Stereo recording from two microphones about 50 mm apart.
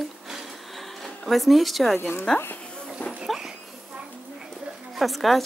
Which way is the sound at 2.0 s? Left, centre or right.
Left.